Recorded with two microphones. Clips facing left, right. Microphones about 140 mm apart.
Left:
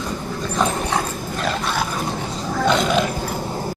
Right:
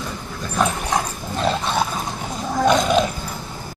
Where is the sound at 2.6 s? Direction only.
15° right (ahead or behind).